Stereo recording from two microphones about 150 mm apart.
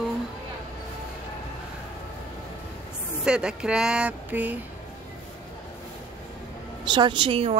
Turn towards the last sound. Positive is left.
turn(degrees=-35)  # may be behind; listen again after turning